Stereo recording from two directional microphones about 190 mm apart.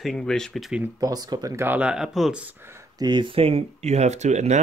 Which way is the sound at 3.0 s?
25° right (ahead or behind).